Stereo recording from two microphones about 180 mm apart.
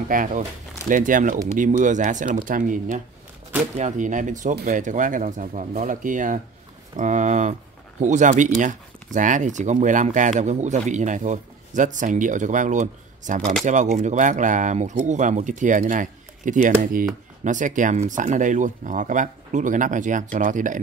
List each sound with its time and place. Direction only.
0.1 s speech: 50° right (ahead or behind)